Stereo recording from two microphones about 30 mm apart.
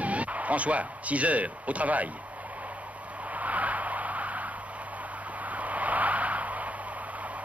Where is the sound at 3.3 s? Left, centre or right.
Right.